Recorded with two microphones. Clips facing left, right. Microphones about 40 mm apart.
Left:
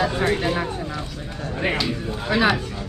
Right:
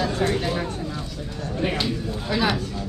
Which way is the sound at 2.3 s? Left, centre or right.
Left.